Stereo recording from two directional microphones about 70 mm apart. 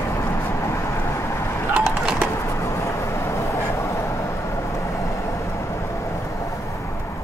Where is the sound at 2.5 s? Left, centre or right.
Left.